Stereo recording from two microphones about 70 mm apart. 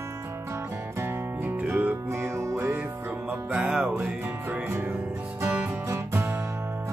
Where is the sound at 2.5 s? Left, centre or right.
Right.